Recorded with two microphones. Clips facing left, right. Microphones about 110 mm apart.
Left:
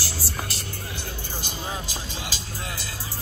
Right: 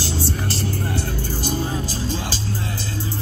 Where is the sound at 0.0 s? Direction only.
30° right (ahead or behind).